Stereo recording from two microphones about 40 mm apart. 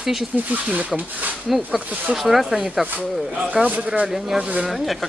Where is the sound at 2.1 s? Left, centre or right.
Centre.